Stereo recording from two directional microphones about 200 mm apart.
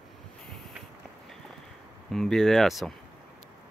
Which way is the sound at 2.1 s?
Centre (ahead or behind).